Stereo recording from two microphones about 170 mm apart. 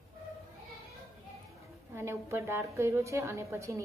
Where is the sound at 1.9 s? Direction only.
15° right (ahead or behind).